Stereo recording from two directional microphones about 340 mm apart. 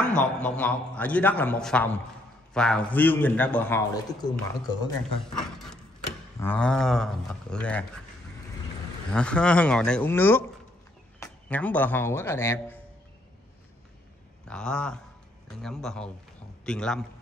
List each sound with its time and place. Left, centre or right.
0.2 s a man's voice: centre
6.4 s a man's voice: centre
9.1 s a man's voice: centre
14.5 s a man's voice: centre